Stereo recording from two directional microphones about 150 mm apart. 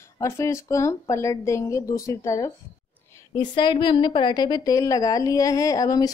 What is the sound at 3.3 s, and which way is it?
A woman's voice, 30° left (ahead or behind).